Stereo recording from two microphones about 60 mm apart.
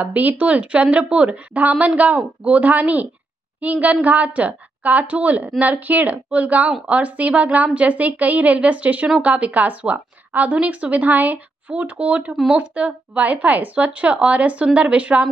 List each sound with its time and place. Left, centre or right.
0.0 s speech: right